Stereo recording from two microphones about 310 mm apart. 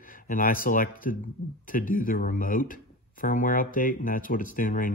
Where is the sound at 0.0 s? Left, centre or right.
Left.